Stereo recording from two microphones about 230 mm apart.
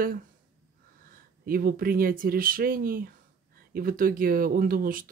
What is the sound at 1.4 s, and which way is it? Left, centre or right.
Speech, right.